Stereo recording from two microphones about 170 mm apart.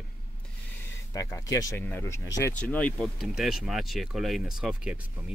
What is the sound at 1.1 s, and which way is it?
Speech, 20° left (ahead or behind).